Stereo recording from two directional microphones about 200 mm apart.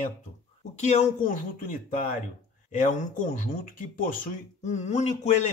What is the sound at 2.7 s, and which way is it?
Speech, 40° left (ahead or behind).